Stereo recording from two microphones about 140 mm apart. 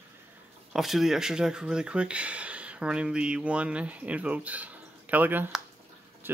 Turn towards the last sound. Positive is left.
turn(degrees=-15)  # may be behind; listen again after turning